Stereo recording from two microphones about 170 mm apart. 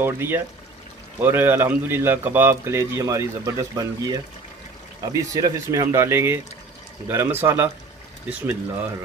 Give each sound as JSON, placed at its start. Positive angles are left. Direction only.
{"t": 0.0, "sound": "speech", "side_deg": -15}